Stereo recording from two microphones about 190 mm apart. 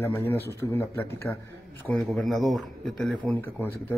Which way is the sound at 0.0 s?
15° left (ahead or behind).